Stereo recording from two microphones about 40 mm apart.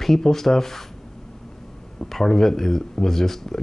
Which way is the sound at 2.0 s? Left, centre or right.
Centre.